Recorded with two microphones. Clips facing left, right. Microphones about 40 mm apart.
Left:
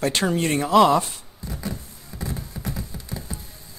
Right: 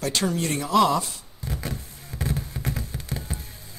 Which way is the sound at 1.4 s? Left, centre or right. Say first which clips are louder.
Even; right.